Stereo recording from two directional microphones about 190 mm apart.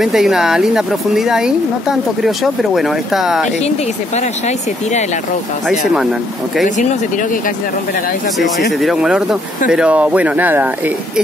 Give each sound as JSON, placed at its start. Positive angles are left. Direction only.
{"t": 0.0, "sound": "speech", "side_deg": 0}
{"t": 3.6, "sound": "speech", "side_deg": 35}
{"t": 6.8, "sound": "speech", "side_deg": 40}
{"t": 8.7, "sound": "speech", "side_deg": 0}